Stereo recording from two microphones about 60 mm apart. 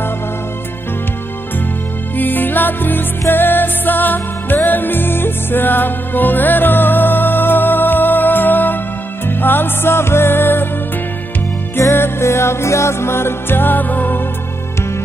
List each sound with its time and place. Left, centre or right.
2.1 s music: left
11.8 s music: left